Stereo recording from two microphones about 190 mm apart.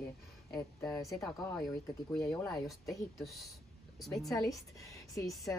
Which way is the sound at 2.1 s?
Centre (ahead or behind).